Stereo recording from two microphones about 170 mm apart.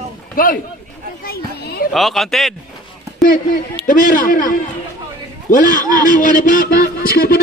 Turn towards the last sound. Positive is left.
turn(degrees=60)  # may be behind; listen again after turning